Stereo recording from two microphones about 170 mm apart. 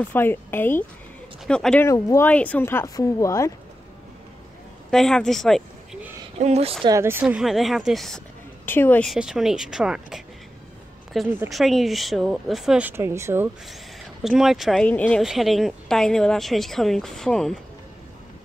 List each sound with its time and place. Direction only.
0.1 s a woman's voice: 10° left (ahead or behind)
1.9 s speech: 15° left (ahead or behind)
4.9 s a woman's voice: 5° left (ahead or behind)
6.4 s speech: 35° right (ahead or behind)
6.9 s a woman's voice: 15° right (ahead or behind); by 8.2 s centre (ahead or behind)
8.6 s speech: 10° left (ahead or behind)
9.1 s a woman's voice: centre (ahead or behind)
11.2 s speech: 15° right (ahead or behind)
11.5 s a woman's voice: centre (ahead or behind)
14.2 s a woman's voice: centre (ahead or behind)